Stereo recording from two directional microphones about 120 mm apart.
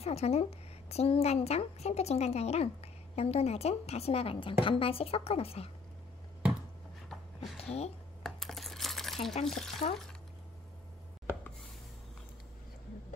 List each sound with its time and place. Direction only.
0.0 s a woman's voice: 60° left (ahead or behind)
7.3 s speech: 60° left (ahead or behind)
8.2 s coin: centre (ahead or behind)
9.5 s speech: 5° left (ahead or behind)